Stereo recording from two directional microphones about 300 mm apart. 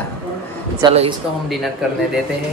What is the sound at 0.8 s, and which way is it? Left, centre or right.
Speech, centre.